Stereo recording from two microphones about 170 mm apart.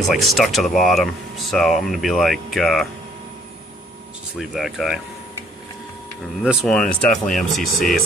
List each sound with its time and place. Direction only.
0.0 s speech: centre (ahead or behind)
4.4 s speech: centre (ahead or behind)
6.4 s speech: centre (ahead or behind)